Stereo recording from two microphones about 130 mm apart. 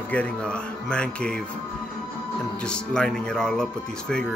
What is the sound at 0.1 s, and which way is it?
Speech, 10° left (ahead or behind).